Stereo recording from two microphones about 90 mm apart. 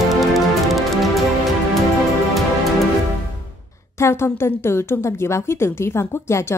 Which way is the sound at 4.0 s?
30° left (ahead or behind).